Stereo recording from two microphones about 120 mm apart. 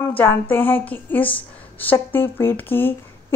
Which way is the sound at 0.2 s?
15° left (ahead or behind).